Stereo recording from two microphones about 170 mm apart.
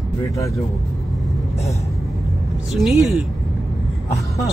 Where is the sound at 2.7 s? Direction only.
Centre (ahead or behind).